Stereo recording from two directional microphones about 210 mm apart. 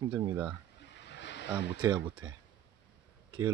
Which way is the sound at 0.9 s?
55° left (ahead or behind).